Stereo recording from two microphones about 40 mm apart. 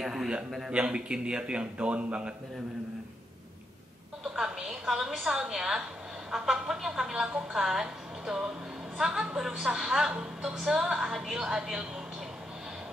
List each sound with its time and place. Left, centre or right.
0.0 s a woman's voice: centre
0.7 s a man's voice: right
4.4 s a woman's voice: centre